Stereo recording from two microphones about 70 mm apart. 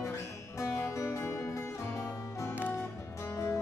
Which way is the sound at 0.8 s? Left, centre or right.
Left.